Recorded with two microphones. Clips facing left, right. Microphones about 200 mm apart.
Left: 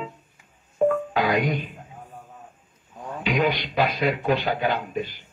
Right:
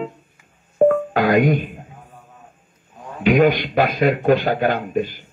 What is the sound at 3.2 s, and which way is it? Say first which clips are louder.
A man's voice: right 9 dB; 50° right (ahead or behind).